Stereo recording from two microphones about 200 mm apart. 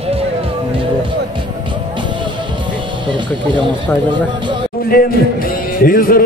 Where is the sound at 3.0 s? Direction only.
25° right (ahead or behind).